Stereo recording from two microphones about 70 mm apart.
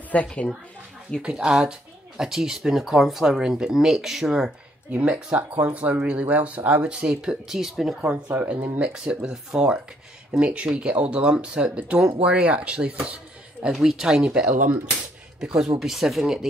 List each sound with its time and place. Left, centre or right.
0.1 s a woman's voice: centre
1.2 s speech: centre
4.9 s speech: centre
8.0 s speech: right
8.7 s speech: centre